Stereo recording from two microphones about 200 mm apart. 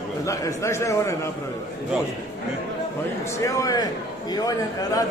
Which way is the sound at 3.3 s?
15° left (ahead or behind).